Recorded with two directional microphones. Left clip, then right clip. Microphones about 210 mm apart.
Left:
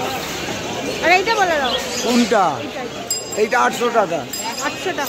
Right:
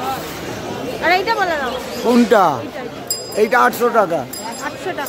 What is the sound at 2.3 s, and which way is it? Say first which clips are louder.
Speech: right 4 dB; 40° right (ahead or behind).